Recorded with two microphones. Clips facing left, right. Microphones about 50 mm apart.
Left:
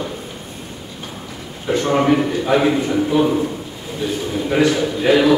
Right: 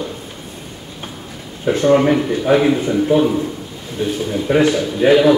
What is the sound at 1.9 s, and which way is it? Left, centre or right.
Speech, centre.